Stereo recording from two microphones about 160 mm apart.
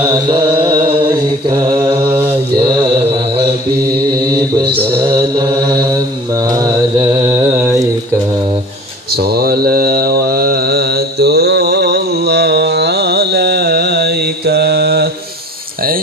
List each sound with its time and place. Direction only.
0.3 s mantra: 35° right (ahead or behind)
1.8 s mantra: 15° right (ahead or behind)
3.0 s a sound: 40° right (ahead or behind)
4.6 s mantra: 30° right (ahead or behind)
9.1 s mantra: 80° right